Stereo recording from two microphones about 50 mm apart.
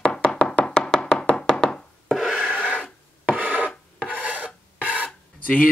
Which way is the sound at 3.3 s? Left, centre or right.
Right.